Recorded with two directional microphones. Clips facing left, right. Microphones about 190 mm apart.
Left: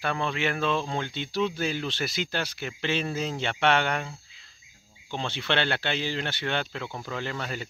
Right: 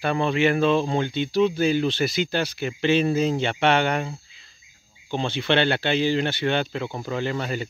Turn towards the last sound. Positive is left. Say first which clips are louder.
# right 7 dB
turn(degrees=-5)  # may be behind; listen again after turning